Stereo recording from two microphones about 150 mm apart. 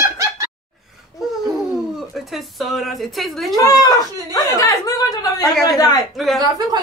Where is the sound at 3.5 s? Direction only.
25° left (ahead or behind).